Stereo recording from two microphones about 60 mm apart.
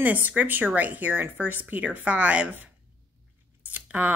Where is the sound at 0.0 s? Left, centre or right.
Right.